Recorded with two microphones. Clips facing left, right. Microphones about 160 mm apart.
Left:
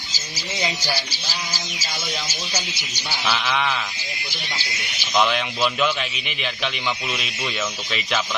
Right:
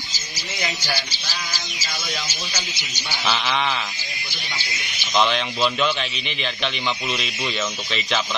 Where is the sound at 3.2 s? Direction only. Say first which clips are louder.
Even; centre (ahead or behind).